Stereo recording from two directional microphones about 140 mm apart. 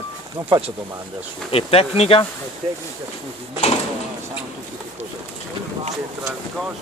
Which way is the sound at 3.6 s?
50° left (ahead or behind).